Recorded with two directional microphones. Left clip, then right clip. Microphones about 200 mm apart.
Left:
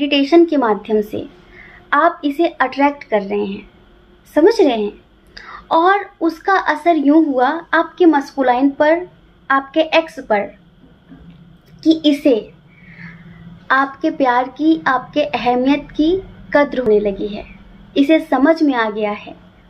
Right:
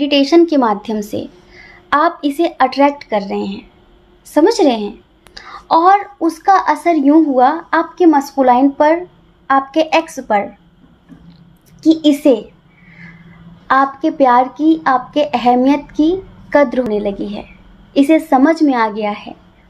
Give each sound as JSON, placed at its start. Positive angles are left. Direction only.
{"t": 0.0, "sound": "a woman's voice", "side_deg": -45}
{"t": 11.8, "sound": "a woman's voice", "side_deg": -45}
{"t": 13.7, "sound": "a woman's voice", "side_deg": -45}